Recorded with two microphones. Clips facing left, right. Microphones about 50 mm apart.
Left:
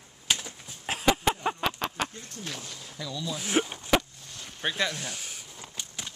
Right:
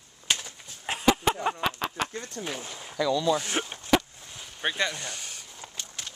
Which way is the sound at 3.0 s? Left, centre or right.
Right.